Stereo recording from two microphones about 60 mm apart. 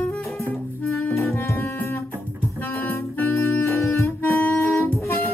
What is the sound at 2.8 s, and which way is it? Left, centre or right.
Music, left.